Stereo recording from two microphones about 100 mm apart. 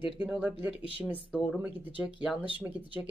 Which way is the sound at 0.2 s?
10° right (ahead or behind).